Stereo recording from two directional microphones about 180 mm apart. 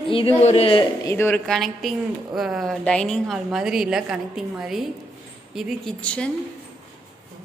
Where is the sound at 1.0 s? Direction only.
15° left (ahead or behind).